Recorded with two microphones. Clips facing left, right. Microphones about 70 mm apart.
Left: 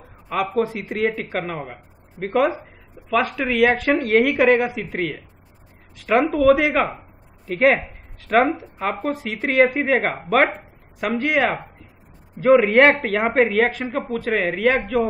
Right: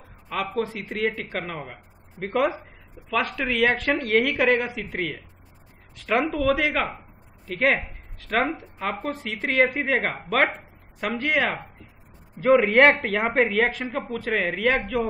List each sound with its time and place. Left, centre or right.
0.6 s speech: centre